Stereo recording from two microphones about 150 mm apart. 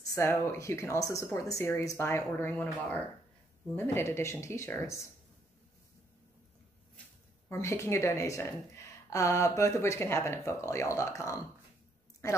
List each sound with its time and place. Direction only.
0.1 s speech: 20° left (ahead or behind)
7.0 s a sound: 10° left (ahead or behind)
7.4 s a woman's voice: 15° left (ahead or behind)